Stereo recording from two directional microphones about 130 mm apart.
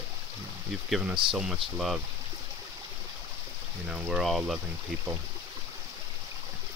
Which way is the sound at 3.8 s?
5° right (ahead or behind).